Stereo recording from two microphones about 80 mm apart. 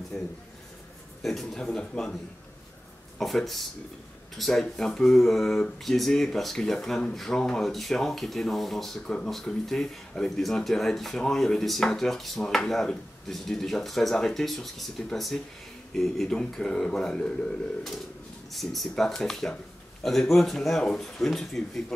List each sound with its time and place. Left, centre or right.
0.1 s speech: centre
1.2 s speech: centre
3.2 s speech: centre
18.5 s speech: centre